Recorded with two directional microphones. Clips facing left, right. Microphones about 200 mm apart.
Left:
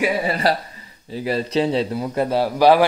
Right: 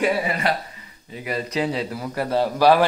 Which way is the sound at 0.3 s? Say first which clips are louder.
Left 4 dB; 35° left (ahead or behind).